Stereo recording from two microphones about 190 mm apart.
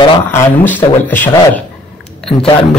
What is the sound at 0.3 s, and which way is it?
Speech, 10° left (ahead or behind).